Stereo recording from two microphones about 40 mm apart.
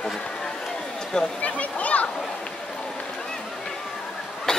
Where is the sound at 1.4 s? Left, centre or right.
Left.